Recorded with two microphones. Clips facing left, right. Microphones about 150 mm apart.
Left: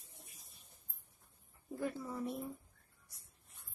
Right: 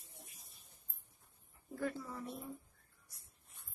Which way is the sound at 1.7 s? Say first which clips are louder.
Left 1 dB; 15° left (ahead or behind).